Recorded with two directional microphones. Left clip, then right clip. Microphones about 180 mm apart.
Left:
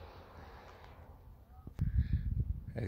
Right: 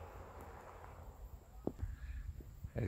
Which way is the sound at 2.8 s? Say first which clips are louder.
Even; 5° left (ahead or behind).